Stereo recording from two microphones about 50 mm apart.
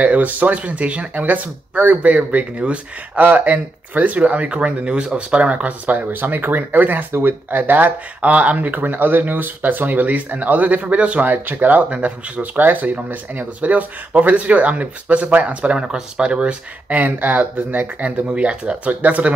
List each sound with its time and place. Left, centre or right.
0.0 s speech: right
11.2 s speech: right